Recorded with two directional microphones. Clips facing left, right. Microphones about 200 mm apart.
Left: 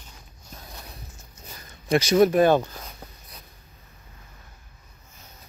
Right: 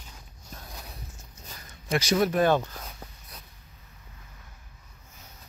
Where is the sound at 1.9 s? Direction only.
20° left (ahead or behind).